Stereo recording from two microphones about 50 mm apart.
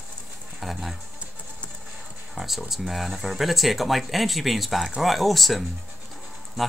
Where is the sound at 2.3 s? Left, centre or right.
Centre.